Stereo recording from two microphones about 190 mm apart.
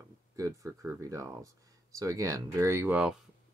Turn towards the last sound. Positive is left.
turn(degrees=-5)  # may be behind; listen again after turning